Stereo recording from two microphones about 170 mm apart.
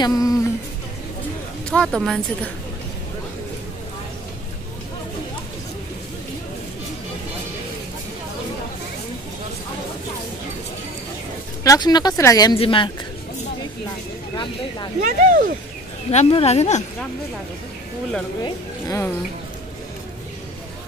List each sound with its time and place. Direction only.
0.0 s speech: 20° left (ahead or behind)
1.7 s a woman's voice: 5° left (ahead or behind)
11.6 s speech: 20° left (ahead or behind)
12.5 s speech: 30° left (ahead or behind)
14.3 s speech: 25° left (ahead or behind)
15.0 s speech: 50° right (ahead or behind)
16.1 s speech: 35° left (ahead or behind)
18.4 s speech: 20° left (ahead or behind)